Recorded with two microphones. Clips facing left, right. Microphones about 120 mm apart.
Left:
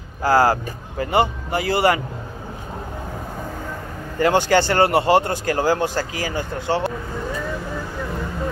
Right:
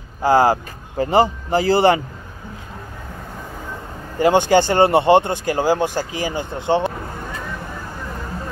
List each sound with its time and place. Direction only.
0.2 s speech: 20° right (ahead or behind)
1.1 s speech: 30° right (ahead or behind)
4.2 s speech: 20° right (ahead or behind)